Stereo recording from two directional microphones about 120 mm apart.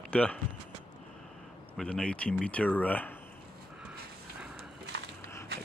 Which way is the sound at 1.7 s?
10° left (ahead or behind).